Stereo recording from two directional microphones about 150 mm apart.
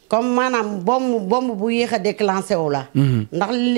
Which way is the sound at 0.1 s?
15° right (ahead or behind).